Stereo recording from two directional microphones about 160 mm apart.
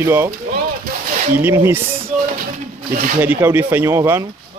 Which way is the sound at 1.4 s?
15° right (ahead or behind).